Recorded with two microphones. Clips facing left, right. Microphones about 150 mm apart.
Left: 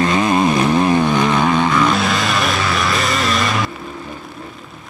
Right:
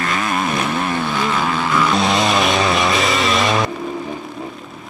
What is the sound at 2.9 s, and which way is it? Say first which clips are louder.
Vehicle: right 1 dB; centre (ahead or behind).